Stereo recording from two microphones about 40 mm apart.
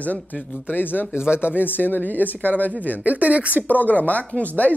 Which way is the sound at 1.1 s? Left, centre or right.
Left.